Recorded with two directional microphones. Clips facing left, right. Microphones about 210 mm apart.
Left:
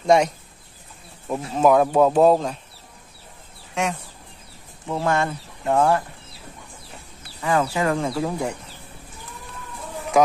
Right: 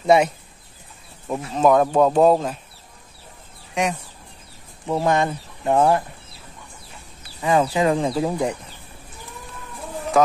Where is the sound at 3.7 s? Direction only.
15° right (ahead or behind).